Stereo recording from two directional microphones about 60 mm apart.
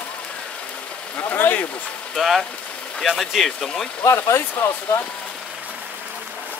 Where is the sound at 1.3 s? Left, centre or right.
Left.